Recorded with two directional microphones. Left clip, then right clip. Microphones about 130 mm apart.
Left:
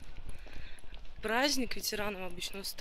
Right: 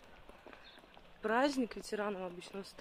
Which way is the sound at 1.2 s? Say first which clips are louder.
Left 2 dB; centre (ahead or behind).